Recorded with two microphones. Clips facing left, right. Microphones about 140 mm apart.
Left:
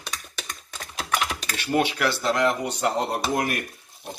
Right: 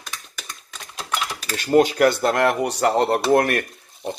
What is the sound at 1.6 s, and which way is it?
Speech, 40° right (ahead or behind).